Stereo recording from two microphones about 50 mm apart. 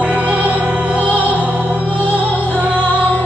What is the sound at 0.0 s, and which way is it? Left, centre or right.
Music, right.